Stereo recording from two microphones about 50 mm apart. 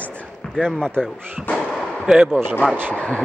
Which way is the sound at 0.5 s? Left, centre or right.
Centre.